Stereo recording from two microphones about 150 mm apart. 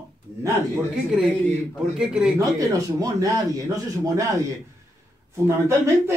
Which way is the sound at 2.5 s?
20° right (ahead or behind).